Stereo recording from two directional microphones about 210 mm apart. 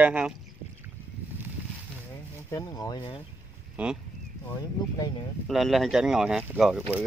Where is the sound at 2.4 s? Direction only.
20° left (ahead or behind).